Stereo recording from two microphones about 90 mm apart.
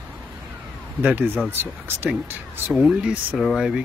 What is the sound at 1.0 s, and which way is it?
Speech, 20° right (ahead or behind).